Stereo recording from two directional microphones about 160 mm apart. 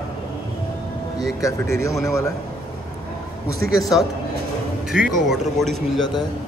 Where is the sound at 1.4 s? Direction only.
20° left (ahead or behind).